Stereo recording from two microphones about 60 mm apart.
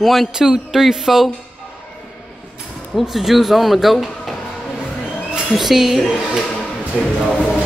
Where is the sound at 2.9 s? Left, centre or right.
Centre.